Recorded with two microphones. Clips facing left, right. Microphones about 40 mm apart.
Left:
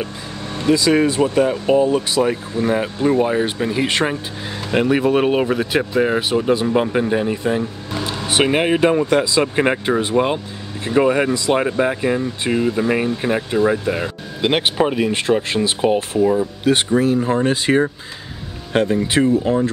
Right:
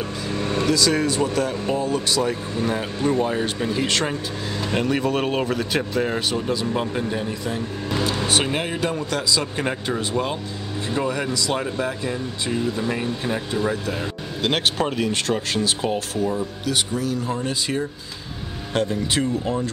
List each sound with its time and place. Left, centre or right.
0.7 s speech: left
6.4 s speech: left
14.4 s speech: centre